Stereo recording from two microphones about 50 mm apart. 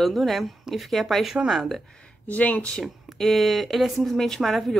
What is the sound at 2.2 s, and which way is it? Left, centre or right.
Speech, left.